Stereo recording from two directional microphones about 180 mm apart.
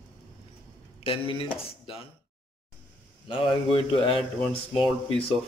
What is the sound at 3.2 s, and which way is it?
Speech, 30° left (ahead or behind).